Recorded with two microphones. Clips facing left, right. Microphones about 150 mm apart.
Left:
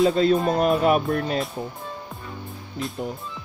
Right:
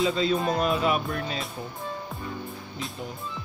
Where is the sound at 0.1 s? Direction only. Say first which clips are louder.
Left 5 dB; 45° left (ahead or behind).